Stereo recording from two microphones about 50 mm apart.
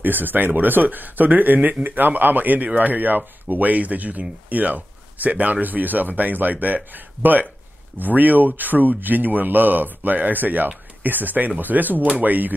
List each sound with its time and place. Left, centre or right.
0.0 s speech: right